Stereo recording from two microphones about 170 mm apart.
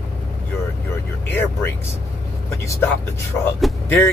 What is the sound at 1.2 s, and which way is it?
Speech, 10° left (ahead or behind).